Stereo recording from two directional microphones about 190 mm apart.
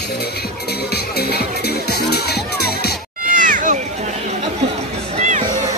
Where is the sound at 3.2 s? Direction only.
45° right (ahead or behind).